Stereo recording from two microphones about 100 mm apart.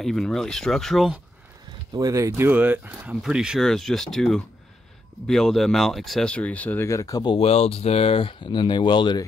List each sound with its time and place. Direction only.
0.0 s speech: centre (ahead or behind)
2.0 s speech: 35° right (ahead or behind); by 3.2 s 20° right (ahead or behind)
3.2 s speech: 5° right (ahead or behind)
3.6 s speech: 5° left (ahead or behind)
6.3 s speech: 15° left (ahead or behind)
6.9 s speech: 35° left (ahead or behind)
7.2 s speech: 80° left; by 9.2 s 50° left (ahead or behind)